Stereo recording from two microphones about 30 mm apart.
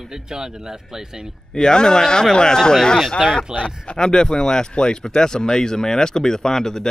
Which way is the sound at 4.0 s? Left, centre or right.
Left.